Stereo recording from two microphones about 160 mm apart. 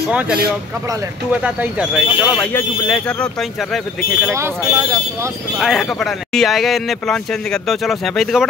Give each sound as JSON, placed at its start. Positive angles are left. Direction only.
{"t": 0.1, "sound": "speech", "side_deg": -10}
{"t": 2.3, "sound": "speech", "side_deg": 10}
{"t": 4.3, "sound": "speech", "side_deg": -15}
{"t": 5.6, "sound": "speech", "side_deg": 0}